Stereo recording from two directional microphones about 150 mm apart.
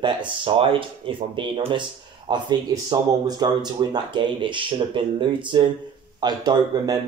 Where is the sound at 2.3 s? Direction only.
30° right (ahead or behind).